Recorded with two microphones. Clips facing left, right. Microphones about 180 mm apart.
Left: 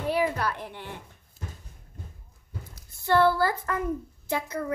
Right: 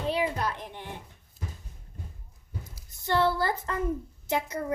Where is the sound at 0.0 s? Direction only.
20° right (ahead or behind).